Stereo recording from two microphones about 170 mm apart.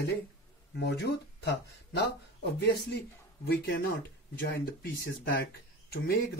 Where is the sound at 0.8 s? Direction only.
85° left.